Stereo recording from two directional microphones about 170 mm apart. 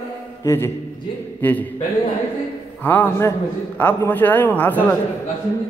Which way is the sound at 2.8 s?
10° left (ahead or behind).